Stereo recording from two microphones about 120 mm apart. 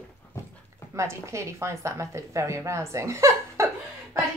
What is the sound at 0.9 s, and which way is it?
A woman's voice, 25° right (ahead or behind).